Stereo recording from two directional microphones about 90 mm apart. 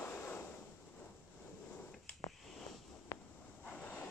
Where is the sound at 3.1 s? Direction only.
40° left (ahead or behind).